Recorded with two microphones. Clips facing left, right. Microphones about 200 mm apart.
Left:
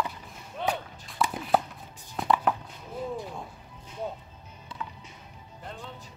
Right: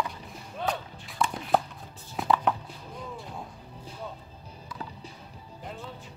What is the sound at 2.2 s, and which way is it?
Chopping, centre (ahead or behind).